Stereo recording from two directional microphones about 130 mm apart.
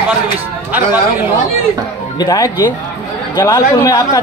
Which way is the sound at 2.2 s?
30° left (ahead or behind).